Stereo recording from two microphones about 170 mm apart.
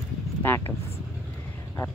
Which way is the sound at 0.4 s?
15° left (ahead or behind).